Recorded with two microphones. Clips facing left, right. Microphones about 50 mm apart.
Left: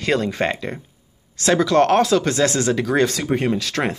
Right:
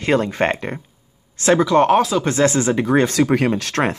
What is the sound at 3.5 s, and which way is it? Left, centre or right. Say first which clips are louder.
Speech: right 2 dB; right.